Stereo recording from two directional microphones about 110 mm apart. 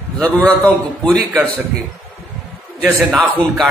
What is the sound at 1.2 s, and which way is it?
Speech, 20° right (ahead or behind).